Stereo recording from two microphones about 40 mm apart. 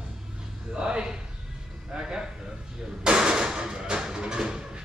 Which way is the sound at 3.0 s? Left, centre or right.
Centre.